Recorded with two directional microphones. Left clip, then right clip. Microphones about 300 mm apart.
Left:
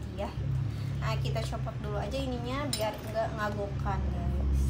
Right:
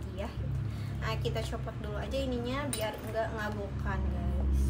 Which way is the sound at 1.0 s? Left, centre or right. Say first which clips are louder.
Even; centre.